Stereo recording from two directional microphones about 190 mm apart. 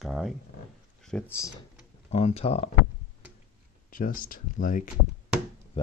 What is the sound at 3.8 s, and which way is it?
Speech, 45° left (ahead or behind).